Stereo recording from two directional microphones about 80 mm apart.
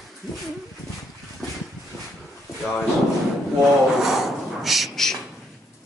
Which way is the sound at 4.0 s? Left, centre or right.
Centre.